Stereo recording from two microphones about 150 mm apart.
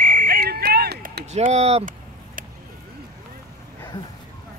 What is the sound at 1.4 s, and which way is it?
Speech, 45° right (ahead or behind).